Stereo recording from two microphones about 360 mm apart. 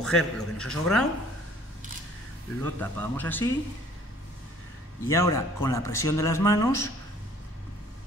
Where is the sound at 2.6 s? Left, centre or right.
Centre.